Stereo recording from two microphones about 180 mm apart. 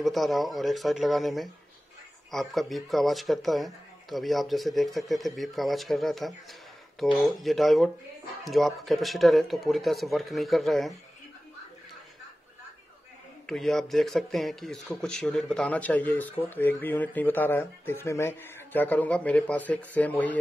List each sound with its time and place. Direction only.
0.0 s speech: centre (ahead or behind)
13.5 s speech: centre (ahead or behind)